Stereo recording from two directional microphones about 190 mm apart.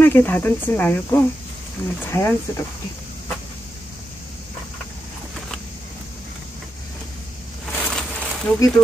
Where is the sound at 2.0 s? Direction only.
10° left (ahead or behind).